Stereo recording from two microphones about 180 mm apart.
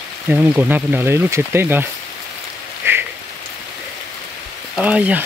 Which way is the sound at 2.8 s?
15° right (ahead or behind).